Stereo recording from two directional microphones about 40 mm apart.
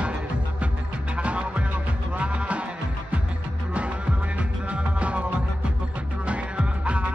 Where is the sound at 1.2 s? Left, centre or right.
Right.